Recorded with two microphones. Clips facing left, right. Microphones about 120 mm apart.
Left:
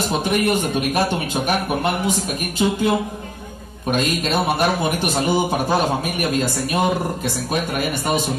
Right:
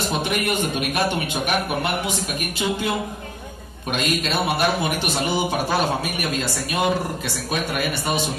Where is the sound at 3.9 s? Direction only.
40° left (ahead or behind).